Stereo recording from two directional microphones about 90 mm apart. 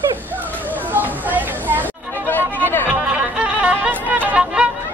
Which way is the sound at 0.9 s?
20° right (ahead or behind).